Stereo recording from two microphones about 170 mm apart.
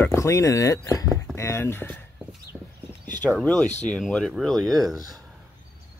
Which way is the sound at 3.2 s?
5° left (ahead or behind).